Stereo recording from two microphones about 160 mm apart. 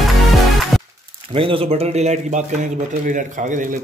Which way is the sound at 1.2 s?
35° right (ahead or behind).